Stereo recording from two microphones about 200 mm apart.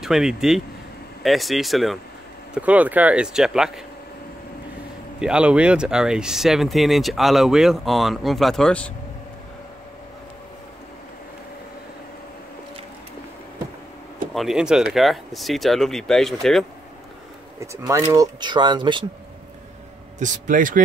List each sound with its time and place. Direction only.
0.0 s speech: 5° right (ahead or behind)
5.2 s speech: 5° right (ahead or behind)
14.3 s speech: centre (ahead or behind)
17.6 s speech: 15° right (ahead or behind)
20.2 s speech: 40° right (ahead or behind)